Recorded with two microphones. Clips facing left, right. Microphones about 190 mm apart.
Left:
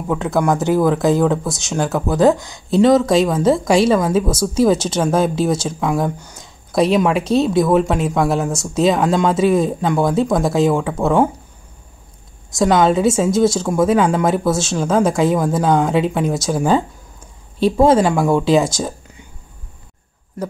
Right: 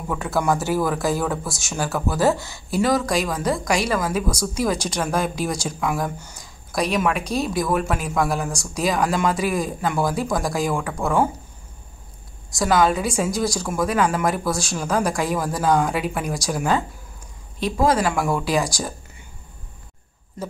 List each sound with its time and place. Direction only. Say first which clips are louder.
0.1 s speech: left 5 dB; 20° left (ahead or behind)
12.5 s speech: left 5 dB; 25° left (ahead or behind)